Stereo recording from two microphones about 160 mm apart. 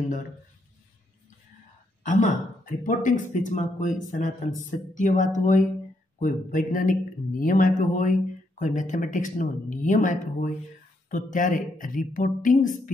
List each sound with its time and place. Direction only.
2.0 s speech: 55° left (ahead or behind)